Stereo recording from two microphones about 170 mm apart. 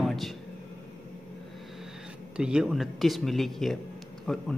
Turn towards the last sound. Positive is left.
turn(degrees=0)  # may be behind; listen again after turning